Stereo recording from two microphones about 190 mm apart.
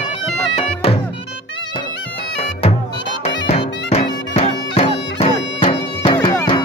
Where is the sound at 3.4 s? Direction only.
35° left (ahead or behind).